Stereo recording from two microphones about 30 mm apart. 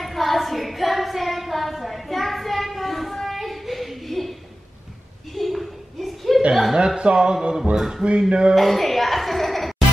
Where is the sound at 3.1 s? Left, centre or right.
Centre.